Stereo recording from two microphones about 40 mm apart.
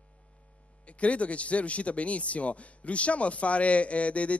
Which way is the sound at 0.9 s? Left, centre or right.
Left.